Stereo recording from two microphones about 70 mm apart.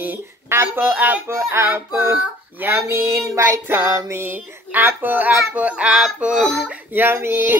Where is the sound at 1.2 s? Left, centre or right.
Right.